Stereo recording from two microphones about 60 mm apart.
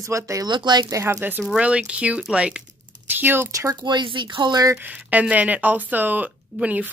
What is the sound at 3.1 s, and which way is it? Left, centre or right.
Speech, right.